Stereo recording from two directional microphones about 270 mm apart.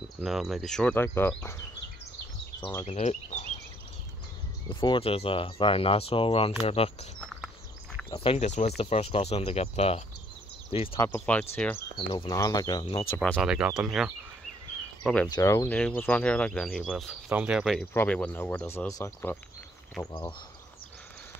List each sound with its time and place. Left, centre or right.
0.2 s speech: centre
2.8 s speech: left
4.6 s speech: centre
11.1 s speech: centre
13.2 s speech: centre
15.2 s speech: centre